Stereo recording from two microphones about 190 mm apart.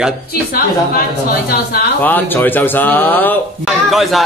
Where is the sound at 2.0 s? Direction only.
10° left (ahead or behind).